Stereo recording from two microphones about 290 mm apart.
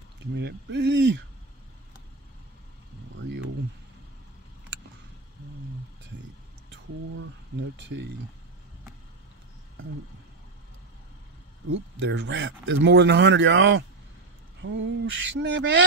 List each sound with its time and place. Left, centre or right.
0.3 s speech: right
11.7 s speech: right